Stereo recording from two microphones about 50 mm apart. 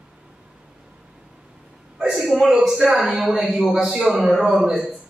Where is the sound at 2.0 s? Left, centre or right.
Centre.